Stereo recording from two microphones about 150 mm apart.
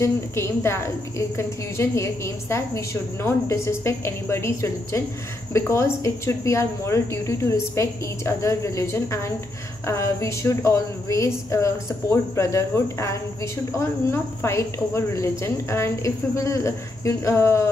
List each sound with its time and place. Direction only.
0.0 s a woman's voice: 15° left (ahead or behind)